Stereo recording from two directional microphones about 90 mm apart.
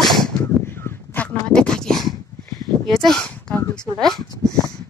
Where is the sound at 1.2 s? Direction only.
20° left (ahead or behind).